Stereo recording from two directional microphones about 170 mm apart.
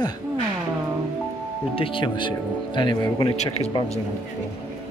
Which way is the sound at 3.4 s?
40° left (ahead or behind).